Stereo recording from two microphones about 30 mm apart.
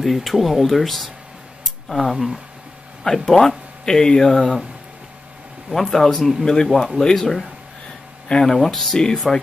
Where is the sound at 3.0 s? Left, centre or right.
Centre.